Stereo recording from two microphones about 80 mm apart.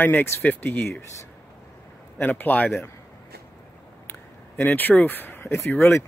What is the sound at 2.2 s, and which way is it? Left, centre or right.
Speech, left.